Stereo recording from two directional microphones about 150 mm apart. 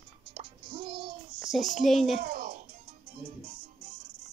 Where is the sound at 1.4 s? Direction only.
Centre (ahead or behind).